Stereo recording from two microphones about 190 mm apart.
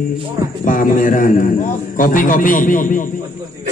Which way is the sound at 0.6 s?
45° left (ahead or behind).